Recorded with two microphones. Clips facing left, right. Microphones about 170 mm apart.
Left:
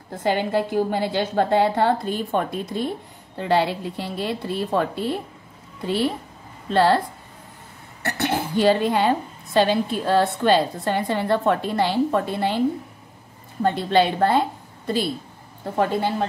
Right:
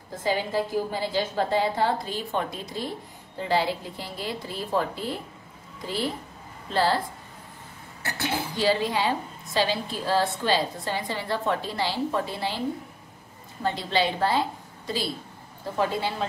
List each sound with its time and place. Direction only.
0.2 s a woman's voice: 65° left (ahead or behind)
8.0 s a woman's voice: 60° left (ahead or behind)
13.6 s a woman's voice: 55° left (ahead or behind)
15.8 s speech: 55° left (ahead or behind)